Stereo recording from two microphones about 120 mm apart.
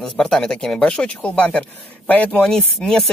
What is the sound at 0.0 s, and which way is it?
Speech, 5° left (ahead or behind).